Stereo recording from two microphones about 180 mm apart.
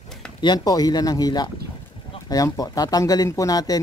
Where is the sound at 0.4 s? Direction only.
25° left (ahead or behind).